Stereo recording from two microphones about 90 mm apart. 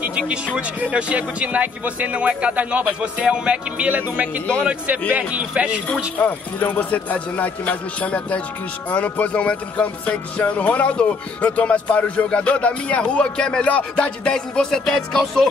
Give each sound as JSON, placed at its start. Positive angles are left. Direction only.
{"t": 0.0, "sound": "speech", "side_deg": -10}
{"t": 6.1, "sound": "speech", "side_deg": 15}